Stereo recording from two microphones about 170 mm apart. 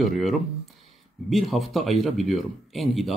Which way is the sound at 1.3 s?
Centre (ahead or behind).